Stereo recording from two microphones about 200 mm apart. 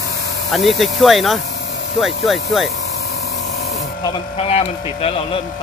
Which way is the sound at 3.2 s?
60° left (ahead or behind).